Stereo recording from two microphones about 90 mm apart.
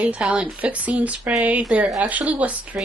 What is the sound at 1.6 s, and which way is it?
Speech, 5° right (ahead or behind).